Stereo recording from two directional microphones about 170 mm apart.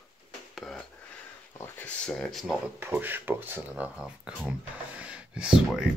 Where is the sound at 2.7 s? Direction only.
10° right (ahead or behind).